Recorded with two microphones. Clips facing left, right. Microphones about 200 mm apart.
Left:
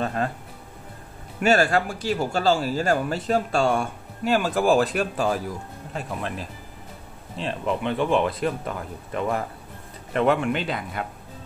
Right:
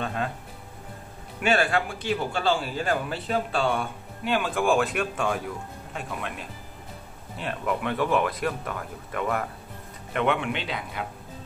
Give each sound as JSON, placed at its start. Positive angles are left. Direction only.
{"t": 0.0, "sound": "music", "side_deg": 40}
{"t": 1.4, "sound": "speech", "side_deg": 40}